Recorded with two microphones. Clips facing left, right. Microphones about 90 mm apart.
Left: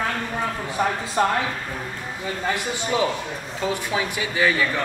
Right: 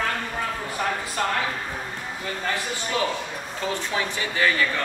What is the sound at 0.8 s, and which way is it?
Speech, 10° left (ahead or behind).